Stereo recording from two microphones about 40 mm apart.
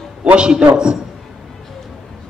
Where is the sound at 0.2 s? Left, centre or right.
Right.